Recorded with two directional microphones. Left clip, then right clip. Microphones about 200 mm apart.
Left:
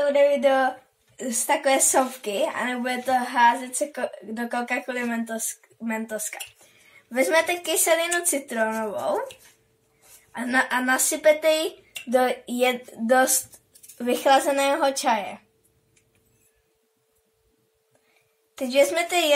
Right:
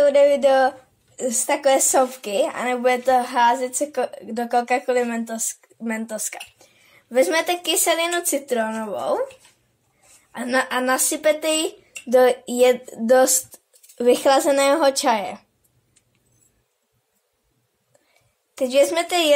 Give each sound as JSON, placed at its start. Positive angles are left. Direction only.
{"t": 0.0, "sound": "speech", "side_deg": -55}
{"t": 10.3, "sound": "speech", "side_deg": -50}
{"t": 18.5, "sound": "speech", "side_deg": -45}